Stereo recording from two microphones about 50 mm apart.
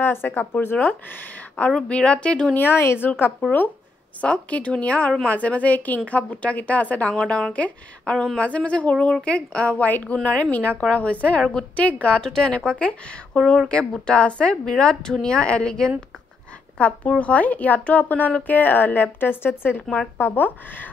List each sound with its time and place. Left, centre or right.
0.0 s a woman's voice: left
1.8 s speech: centre
2.7 s speech: left
4.2 s speech: left
7.2 s a woman's voice: centre
12.0 s a woman's voice: centre; by 20.9 s left